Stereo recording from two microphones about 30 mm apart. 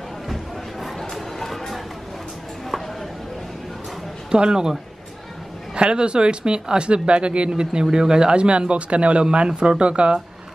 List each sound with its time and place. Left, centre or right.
0.3 s a sound: centre
4.3 s speech: right
5.8 s speech: right
9.2 s speech: right